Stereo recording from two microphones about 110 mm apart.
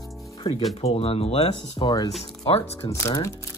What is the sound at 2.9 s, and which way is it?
Speech, 25° left (ahead or behind).